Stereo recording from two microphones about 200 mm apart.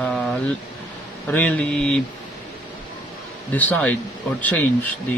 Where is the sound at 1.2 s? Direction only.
5° left (ahead or behind).